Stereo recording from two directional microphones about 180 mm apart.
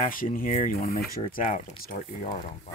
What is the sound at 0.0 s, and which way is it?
Speech, 50° left (ahead or behind).